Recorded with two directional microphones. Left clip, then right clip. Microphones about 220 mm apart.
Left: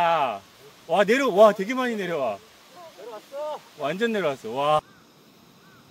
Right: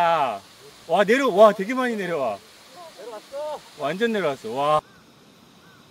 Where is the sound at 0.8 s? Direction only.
10° left (ahead or behind).